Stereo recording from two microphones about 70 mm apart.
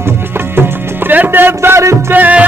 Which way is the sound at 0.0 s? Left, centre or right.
Right.